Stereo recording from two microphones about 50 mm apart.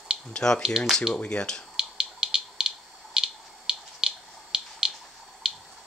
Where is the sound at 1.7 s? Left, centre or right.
Centre.